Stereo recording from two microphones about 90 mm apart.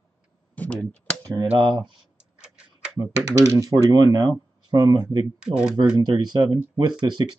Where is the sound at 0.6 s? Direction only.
10° left (ahead or behind).